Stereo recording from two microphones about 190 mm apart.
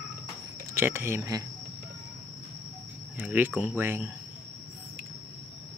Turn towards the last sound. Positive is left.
turn(degrees=-10)  # may be behind; listen again after turning